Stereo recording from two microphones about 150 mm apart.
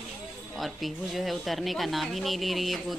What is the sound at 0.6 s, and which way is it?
Speech, centre (ahead or behind).